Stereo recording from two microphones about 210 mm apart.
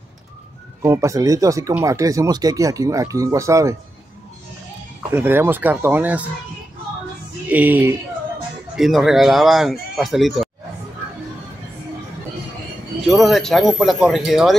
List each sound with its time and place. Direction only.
0.8 s speech: 15° right (ahead or behind)
5.1 s speech: 10° right (ahead or behind)
7.4 s speech: 10° right (ahead or behind)
13.0 s speech: centre (ahead or behind)